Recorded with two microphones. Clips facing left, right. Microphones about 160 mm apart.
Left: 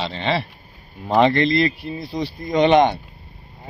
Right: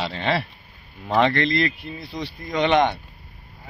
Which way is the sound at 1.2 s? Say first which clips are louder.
Left 4 dB; 35° left (ahead or behind).